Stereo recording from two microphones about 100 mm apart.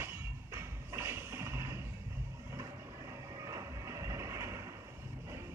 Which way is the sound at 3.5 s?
30° right (ahead or behind).